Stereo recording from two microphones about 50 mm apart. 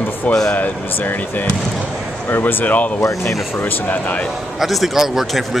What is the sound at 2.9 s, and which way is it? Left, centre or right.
Speech, left.